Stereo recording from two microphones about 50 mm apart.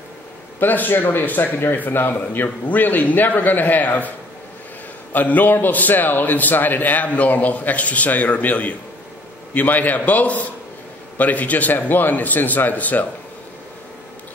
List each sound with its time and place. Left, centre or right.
0.6 s a man's voice: left
5.1 s a man's voice: left